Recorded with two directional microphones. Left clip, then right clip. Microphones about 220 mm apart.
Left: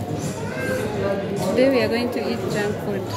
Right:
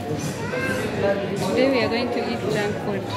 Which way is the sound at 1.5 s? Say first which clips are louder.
Left 2 dB; 30° left (ahead or behind).